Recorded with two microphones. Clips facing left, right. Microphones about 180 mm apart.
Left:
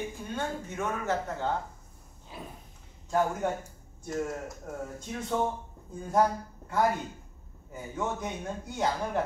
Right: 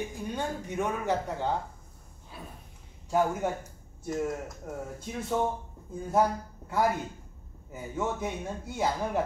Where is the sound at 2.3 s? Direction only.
20° left (ahead or behind).